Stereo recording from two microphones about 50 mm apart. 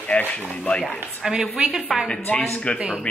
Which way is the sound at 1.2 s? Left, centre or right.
Centre.